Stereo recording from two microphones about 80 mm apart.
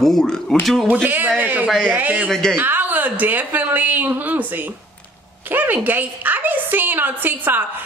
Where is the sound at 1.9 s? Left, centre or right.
Right.